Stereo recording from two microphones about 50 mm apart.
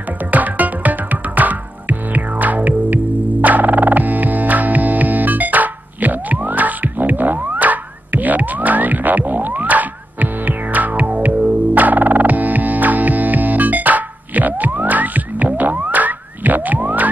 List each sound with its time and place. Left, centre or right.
0.3 s music: right